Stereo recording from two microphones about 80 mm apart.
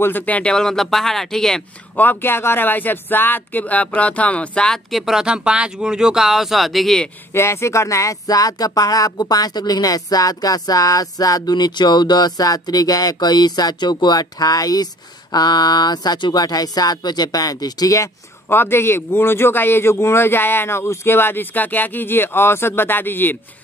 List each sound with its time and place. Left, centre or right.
0.0 s speech: left; by 1.6 s centre
2.0 s speech: left; by 7.1 s centre
7.3 s speech: left
18.5 s a man's voice: left